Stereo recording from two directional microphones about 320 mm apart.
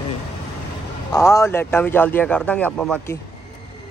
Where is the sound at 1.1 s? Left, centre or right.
Centre.